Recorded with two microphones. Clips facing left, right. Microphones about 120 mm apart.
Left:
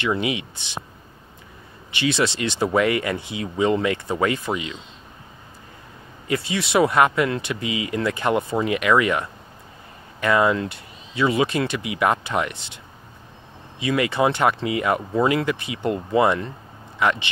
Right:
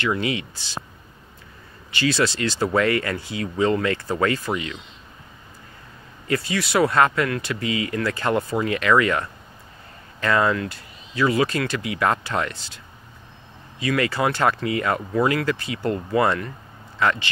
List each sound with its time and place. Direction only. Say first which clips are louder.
0.0 s speech: even; 20° left (ahead or behind)
2.0 s speech: even; 20° left (ahead or behind)
6.2 s speech: even; 25° left (ahead or behind)